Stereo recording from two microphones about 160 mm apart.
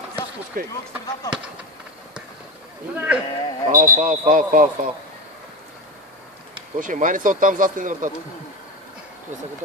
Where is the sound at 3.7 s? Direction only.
55° right (ahead or behind).